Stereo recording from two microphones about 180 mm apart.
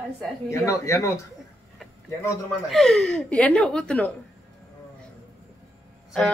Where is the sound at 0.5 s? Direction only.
15° left (ahead or behind).